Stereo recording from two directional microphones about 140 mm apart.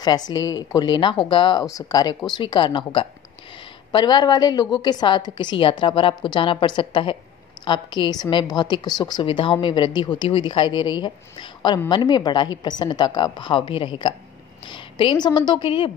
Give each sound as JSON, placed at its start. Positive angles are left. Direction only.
{"t": 0.0, "sound": "a woman's voice", "side_deg": 30}